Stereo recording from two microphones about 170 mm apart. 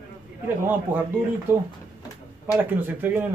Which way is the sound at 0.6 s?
10° right (ahead or behind).